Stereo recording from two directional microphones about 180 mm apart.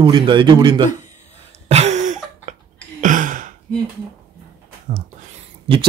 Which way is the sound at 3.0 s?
45° right (ahead or behind).